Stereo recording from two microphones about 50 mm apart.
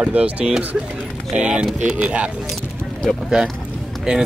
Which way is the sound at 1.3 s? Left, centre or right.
Right.